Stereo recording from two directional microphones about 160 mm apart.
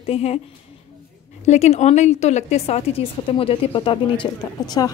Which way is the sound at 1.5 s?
45° left (ahead or behind).